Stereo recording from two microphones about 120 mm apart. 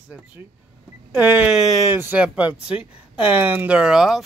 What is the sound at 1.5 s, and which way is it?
Speech, centre (ahead or behind).